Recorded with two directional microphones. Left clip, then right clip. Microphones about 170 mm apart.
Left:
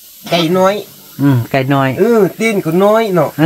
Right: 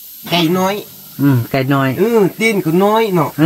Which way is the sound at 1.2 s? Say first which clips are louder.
Left 2 dB; 10° left (ahead or behind).